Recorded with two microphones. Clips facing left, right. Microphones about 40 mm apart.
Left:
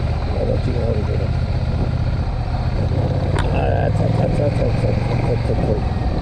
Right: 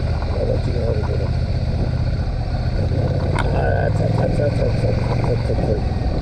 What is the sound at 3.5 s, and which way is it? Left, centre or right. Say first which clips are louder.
Vehicle: left 1 dB; left.